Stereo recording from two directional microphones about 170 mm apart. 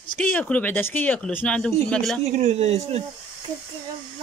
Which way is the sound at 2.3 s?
40° right (ahead or behind).